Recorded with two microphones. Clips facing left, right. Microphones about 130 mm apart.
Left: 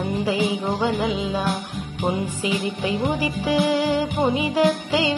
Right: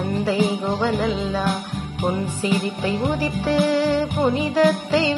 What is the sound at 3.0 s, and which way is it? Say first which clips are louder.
Music: right 1 dB; 10° left (ahead or behind).